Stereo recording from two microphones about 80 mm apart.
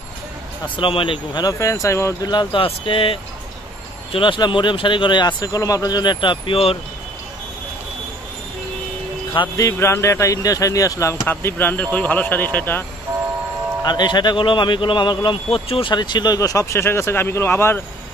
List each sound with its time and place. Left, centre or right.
0.7 s speech: left
1.4 s speech: left
2.2 s speech: left
4.2 s speech: left
5.4 s speech: left
9.6 s speech: left
11.2 s speech: left
13.1 s vehicle: right
13.8 s speech: left
15.8 s speech: left